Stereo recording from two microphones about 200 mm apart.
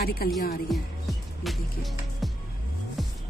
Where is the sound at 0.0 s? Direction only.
50° left (ahead or behind).